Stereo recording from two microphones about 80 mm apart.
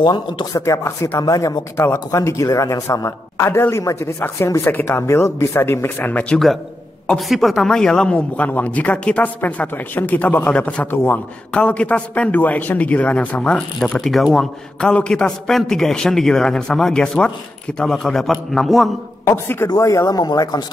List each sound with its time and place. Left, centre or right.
0.0 s speech: left
0.5 s a man's voice: left
1.2 s a man's voice: left
4.6 s a man's voice: left
7.2 s a man's voice: centre
19.2 s a man's voice: left
19.8 s speech: left